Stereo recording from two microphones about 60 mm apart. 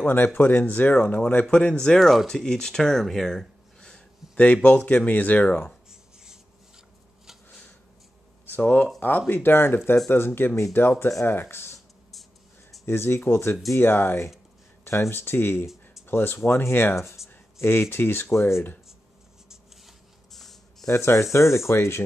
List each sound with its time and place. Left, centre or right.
0.0 s speech: left; by 2.0 s centre
2.0 s speech: centre
2.2 s speech: centre
4.6 s speech: left
5.9 s a sound: centre
8.5 s speech: left
9.3 s speech: left
12.8 s speech: left
20.8 s speech: left